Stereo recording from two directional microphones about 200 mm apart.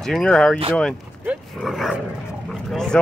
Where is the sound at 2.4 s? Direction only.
Centre (ahead or behind).